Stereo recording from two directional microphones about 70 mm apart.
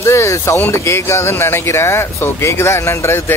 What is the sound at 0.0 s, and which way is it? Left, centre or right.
Speech, left.